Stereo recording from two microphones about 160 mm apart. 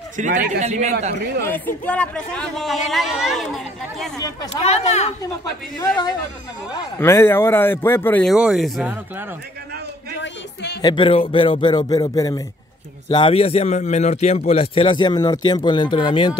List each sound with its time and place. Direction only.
0.2 s a man's voice: 50° right (ahead or behind)
1.4 s speech: 15° left (ahead or behind)
4.6 s speech: 45° left (ahead or behind)
7.0 s speech: 15° left (ahead or behind)
8.3 s speech: centre (ahead or behind)
10.2 s a sound: 90° left
10.8 s speech: 30° left (ahead or behind)
13.1 s a man's voice: 35° left (ahead or behind)